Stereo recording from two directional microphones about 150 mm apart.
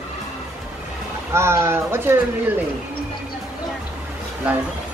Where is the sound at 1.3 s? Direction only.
15° right (ahead or behind).